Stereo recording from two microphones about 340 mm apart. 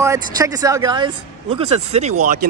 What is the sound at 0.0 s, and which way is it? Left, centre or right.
Speech, centre.